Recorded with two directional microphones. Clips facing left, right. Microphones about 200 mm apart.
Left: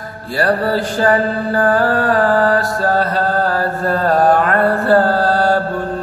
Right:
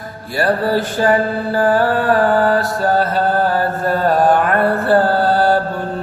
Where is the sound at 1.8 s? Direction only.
25° right (ahead or behind).